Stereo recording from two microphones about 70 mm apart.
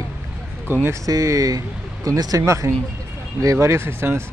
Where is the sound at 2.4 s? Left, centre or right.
Right.